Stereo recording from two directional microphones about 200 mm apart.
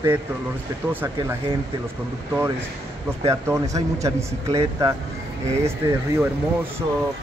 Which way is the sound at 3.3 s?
15° right (ahead or behind).